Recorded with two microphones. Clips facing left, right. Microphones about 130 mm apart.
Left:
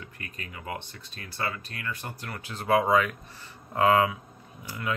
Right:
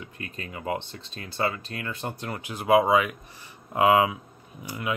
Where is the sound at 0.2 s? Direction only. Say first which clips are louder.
Right 7 dB; 25° right (ahead or behind).